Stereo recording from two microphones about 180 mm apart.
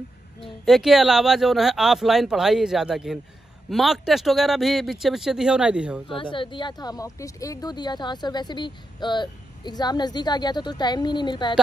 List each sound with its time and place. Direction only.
0.7 s speech: centre (ahead or behind)
6.0 s speech: 30° left (ahead or behind)